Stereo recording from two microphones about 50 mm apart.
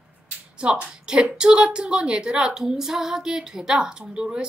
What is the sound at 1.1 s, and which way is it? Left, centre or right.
A woman's voice, centre.